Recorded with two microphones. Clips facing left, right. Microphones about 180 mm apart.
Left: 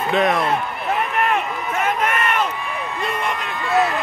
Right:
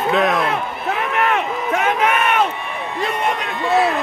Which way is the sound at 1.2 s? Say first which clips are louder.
Right 2 dB; 80° right.